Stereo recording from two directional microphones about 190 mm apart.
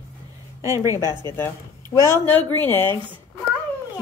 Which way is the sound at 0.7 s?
15° right (ahead or behind).